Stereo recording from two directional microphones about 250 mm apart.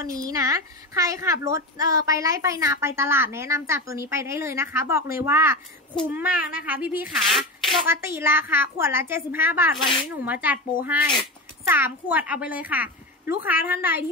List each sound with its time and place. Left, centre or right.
0.0 s a woman's voice: centre